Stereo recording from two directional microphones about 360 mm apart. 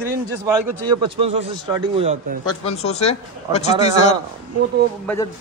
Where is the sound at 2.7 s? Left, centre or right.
Centre.